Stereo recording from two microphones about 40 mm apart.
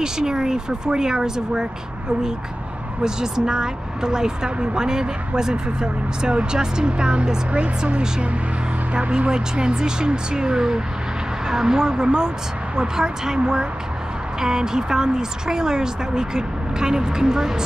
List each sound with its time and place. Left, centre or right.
0.0 s a woman's voice: centre
3.0 s a woman's voice: centre